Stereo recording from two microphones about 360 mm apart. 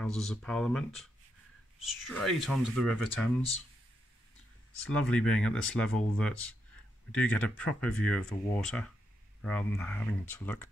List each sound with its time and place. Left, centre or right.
0.0 s speech: centre
2.0 s speech: centre
4.9 s speech: centre